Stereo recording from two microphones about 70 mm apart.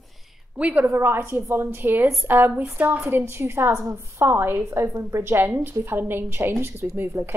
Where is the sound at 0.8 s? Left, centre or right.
Right.